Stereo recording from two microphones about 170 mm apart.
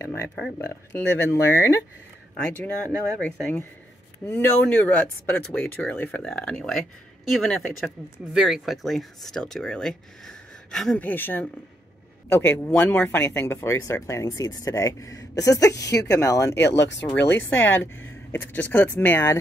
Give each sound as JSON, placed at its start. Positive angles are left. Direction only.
{"t": 0.0, "sound": "a sound", "side_deg": 15}
{"t": 0.9, "sound": "speech", "side_deg": 15}
{"t": 16.5, "sound": "speech", "side_deg": 90}
{"t": 17.4, "sound": "speech", "side_deg": 10}